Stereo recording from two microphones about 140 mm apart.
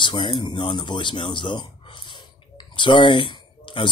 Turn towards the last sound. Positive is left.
turn(degrees=35)  # may be behind; listen again after turning